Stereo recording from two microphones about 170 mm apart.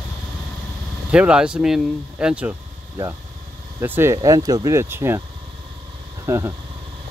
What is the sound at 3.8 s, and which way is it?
Speech, 15° right (ahead or behind).